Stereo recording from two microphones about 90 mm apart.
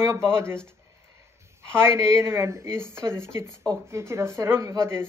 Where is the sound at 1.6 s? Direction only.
30° right (ahead or behind).